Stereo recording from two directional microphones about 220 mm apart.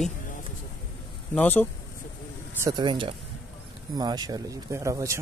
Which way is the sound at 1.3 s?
10° left (ahead or behind).